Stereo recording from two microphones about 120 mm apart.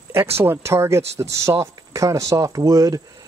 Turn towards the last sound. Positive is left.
turn(degrees=-30)  # may be behind; listen again after turning